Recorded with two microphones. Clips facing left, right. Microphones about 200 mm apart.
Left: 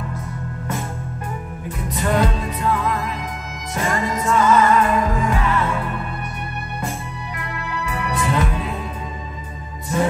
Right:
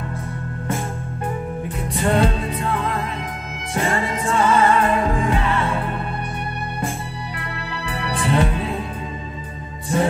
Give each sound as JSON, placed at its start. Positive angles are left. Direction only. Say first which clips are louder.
{"t": 2.0, "sound": "music", "louder": "right 1 dB", "side_deg": -30}
{"t": 7.8, "sound": "music", "louder": "even", "side_deg": -30}